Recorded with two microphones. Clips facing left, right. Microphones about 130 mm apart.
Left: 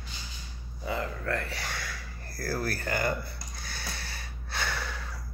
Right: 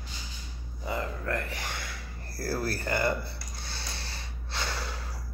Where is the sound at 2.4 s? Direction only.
30° right (ahead or behind).